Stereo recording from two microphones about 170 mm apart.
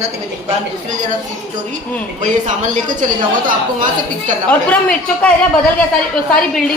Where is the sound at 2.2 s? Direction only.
45° right (ahead or behind).